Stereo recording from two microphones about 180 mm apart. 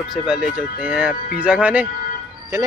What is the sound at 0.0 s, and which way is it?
Speech, centre (ahead or behind).